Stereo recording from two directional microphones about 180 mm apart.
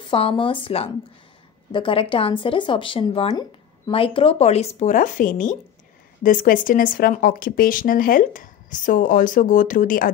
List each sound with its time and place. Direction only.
0.0 s speech: 30° left (ahead or behind); by 10.1 s 50° left (ahead or behind)